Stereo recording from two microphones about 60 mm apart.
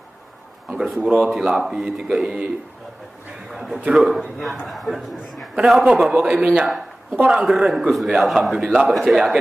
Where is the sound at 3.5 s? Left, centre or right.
Centre.